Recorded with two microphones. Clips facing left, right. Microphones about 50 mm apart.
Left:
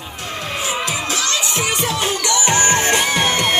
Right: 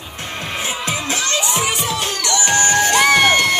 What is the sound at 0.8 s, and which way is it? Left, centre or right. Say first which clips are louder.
Children shouting: even; right.